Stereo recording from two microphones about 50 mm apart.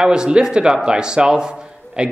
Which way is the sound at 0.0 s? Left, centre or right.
Centre.